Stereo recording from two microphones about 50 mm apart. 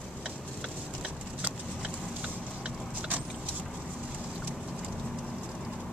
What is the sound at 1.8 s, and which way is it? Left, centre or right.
Vehicle, right.